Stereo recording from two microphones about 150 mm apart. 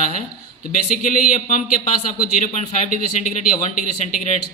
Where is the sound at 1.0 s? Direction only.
60° left (ahead or behind).